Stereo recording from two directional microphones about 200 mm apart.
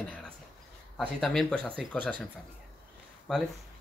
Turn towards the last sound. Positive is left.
turn(degrees=0)  # may be behind; listen again after turning